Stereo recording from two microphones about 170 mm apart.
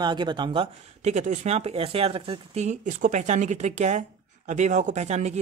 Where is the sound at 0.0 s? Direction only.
25° right (ahead or behind).